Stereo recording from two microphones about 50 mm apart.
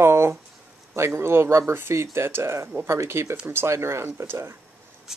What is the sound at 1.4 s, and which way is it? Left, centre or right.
Speech, right.